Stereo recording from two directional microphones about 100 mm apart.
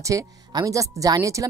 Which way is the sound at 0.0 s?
35° right (ahead or behind).